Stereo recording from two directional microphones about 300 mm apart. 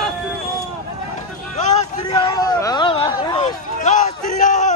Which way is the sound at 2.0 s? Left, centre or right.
Centre.